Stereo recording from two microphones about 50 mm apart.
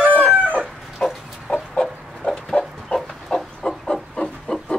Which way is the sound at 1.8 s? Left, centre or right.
Centre.